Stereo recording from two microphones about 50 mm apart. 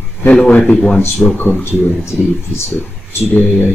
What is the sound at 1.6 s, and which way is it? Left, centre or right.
Speech, left.